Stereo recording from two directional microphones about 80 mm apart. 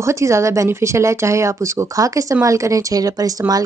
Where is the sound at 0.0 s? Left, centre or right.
Right.